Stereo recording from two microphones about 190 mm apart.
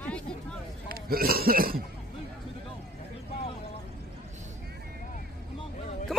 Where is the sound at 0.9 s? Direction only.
50° right (ahead or behind).